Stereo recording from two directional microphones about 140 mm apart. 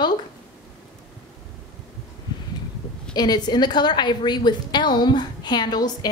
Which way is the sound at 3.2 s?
30° left (ahead or behind).